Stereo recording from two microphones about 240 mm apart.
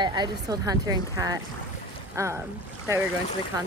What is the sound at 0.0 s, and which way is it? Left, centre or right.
Speech, centre.